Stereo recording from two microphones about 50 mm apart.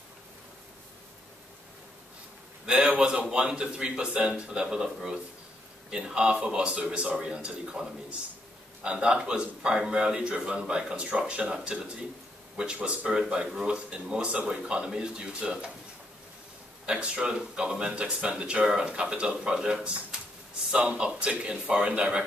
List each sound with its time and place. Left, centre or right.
2.6 s speech: centre
16.8 s speech: centre